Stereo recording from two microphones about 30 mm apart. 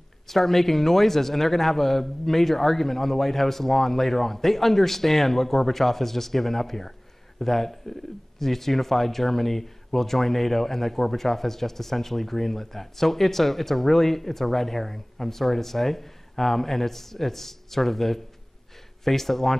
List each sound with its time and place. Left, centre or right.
0.3 s speech: centre